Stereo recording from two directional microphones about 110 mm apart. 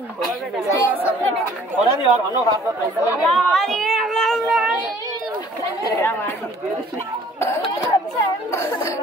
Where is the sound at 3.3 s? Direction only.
5° left (ahead or behind).